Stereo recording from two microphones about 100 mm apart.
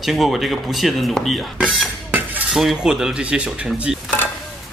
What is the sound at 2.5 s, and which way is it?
Speech, 5° right (ahead or behind).